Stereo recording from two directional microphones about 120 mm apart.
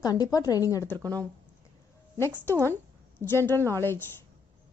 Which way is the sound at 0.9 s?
30° right (ahead or behind).